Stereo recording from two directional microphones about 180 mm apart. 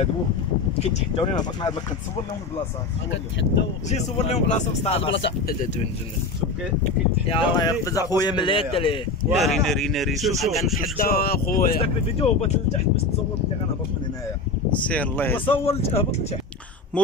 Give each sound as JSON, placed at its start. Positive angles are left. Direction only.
{"t": 0.7, "sound": "speech", "side_deg": 35}
{"t": 1.3, "sound": "speech", "side_deg": 25}
{"t": 3.1, "sound": "speech", "side_deg": 80}
{"t": 3.9, "sound": "speech", "side_deg": 40}
{"t": 6.8, "sound": "speech", "side_deg": 30}
{"t": 9.4, "sound": "speech", "side_deg": 0}
{"t": 11.0, "sound": "speech", "side_deg": 60}
{"t": 11.8, "sound": "speech", "side_deg": 35}
{"t": 14.9, "sound": "speech", "side_deg": 10}
{"t": 15.4, "sound": "speech", "side_deg": 30}